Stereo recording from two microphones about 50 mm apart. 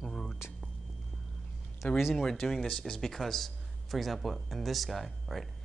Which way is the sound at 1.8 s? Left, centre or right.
Left.